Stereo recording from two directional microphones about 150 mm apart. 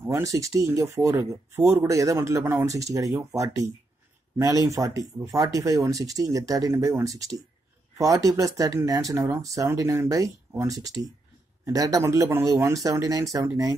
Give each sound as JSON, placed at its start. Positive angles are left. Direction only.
{"t": 0.0, "sound": "speech", "side_deg": -20}